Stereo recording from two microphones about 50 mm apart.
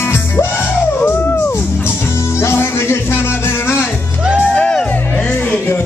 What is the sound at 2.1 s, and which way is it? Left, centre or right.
Music, left.